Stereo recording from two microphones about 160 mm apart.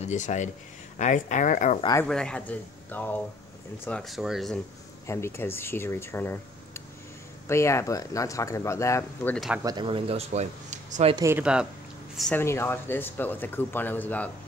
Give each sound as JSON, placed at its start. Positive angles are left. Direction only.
{"t": 0.0, "sound": "speech", "side_deg": 50}
{"t": 2.0, "sound": "speech", "side_deg": 5}
{"t": 5.0, "sound": "speech", "side_deg": 15}
{"t": 9.6, "sound": "speech", "side_deg": -20}
{"t": 9.8, "sound": "speech", "side_deg": -35}
{"t": 11.1, "sound": "speech", "side_deg": -15}
{"t": 12.4, "sound": "speech", "side_deg": 15}